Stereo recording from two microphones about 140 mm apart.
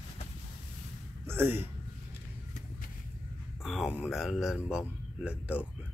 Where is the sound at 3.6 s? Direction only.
5° right (ahead or behind).